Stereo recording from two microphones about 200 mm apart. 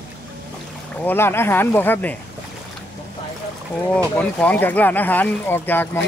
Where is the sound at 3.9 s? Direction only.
5° left (ahead or behind).